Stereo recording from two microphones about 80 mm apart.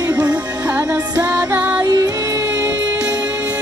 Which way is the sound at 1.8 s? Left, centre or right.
Right.